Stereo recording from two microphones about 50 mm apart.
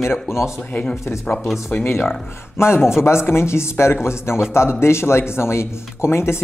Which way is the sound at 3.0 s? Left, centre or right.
Left.